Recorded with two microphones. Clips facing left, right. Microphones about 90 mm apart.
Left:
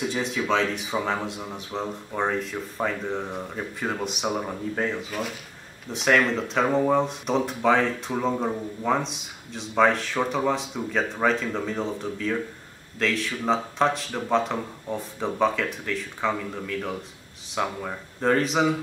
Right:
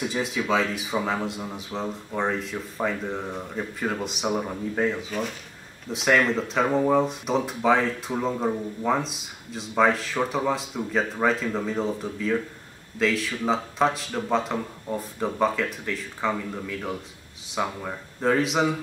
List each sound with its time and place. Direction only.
0.1 s speech: centre (ahead or behind)